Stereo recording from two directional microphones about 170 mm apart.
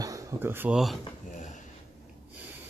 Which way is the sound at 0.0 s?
20° right (ahead or behind).